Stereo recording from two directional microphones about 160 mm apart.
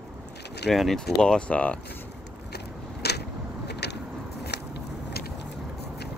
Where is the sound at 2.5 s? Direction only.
90° left.